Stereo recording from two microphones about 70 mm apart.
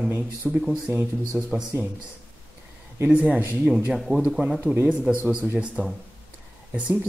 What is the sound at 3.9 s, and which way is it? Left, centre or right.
Speech, centre.